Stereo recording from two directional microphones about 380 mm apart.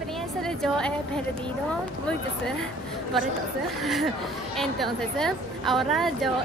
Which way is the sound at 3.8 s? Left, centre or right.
Centre.